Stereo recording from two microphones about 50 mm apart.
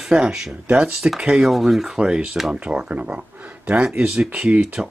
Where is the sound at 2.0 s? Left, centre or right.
Centre.